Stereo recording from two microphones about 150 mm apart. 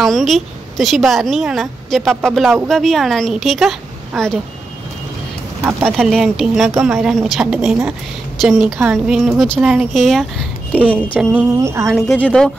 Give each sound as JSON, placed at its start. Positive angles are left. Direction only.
{"t": 0.0, "sound": "a woman's voice", "side_deg": 0}
{"t": 5.6, "sound": "speech", "side_deg": -15}
{"t": 5.9, "sound": "a woman's voice", "side_deg": 0}
{"t": 10.7, "sound": "a woman's voice", "side_deg": -10}
{"t": 12.2, "sound": "speech", "side_deg": 5}